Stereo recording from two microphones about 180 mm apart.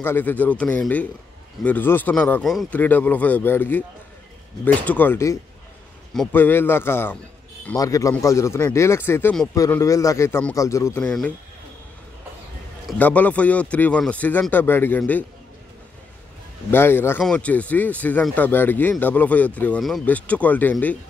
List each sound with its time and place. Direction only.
0.0 s speech: 10° left (ahead or behind)
12.8 s speech: 10° left (ahead or behind)
16.7 s speech: 15° left (ahead or behind)